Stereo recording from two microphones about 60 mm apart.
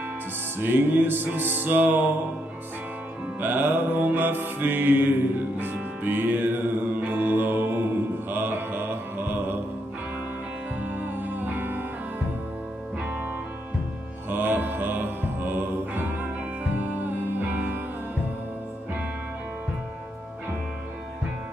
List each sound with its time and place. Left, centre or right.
0.6 s mantra: right
3.3 s mantra: right
5.6 s music: right
7.0 s mantra: right
10.8 s music: right
14.3 s music: right
17.5 s music: right